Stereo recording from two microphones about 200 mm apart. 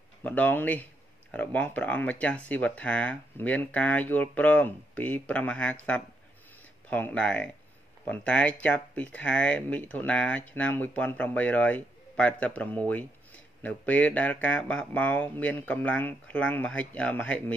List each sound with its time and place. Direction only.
0.2 s speech: 10° left (ahead or behind)